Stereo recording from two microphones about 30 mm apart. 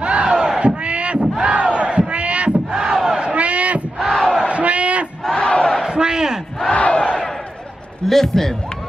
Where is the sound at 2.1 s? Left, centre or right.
Right.